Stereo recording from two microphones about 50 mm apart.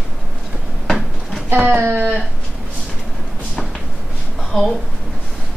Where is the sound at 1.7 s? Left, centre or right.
Right.